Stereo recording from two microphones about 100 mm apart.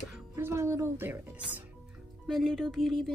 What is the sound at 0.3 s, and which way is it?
Speech, 25° right (ahead or behind).